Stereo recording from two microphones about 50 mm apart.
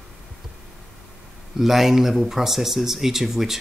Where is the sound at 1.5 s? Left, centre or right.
Centre.